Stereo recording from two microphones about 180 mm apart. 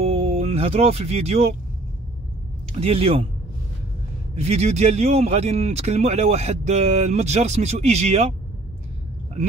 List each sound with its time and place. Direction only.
0.0 s music: 35° right (ahead or behind)
2.8 s a man's voice: 35° right (ahead or behind)
4.4 s a man's voice: 35° right (ahead or behind)